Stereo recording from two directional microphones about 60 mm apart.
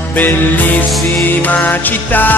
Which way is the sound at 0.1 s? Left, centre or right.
Left.